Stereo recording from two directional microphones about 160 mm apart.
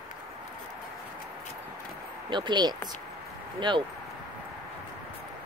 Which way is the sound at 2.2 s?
30° right (ahead or behind).